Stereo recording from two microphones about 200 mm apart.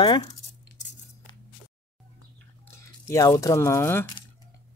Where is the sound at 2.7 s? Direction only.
15° left (ahead or behind).